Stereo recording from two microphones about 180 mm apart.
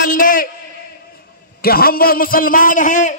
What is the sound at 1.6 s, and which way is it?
A man's voice, 55° left (ahead or behind).